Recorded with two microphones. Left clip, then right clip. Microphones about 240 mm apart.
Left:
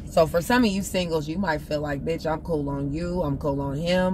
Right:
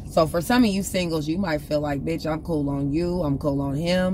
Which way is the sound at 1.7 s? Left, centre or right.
Right.